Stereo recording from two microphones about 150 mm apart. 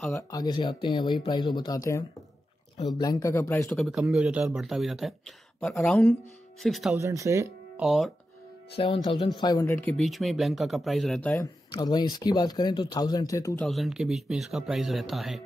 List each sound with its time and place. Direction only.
0.1 s speech: 25° left (ahead or behind)
3.7 s speech: centre (ahead or behind)
7.0 s speech: 20° right (ahead or behind)
7.8 s speech: centre (ahead or behind)
8.7 s speech: 35° left (ahead or behind)
9.4 s speech: 25° left (ahead or behind)
9.8 s speech: 10° left (ahead or behind)
10.0 s speech: centre (ahead or behind)
11.7 s speech: 25° left (ahead or behind)
13.6 s speech: centre (ahead or behind)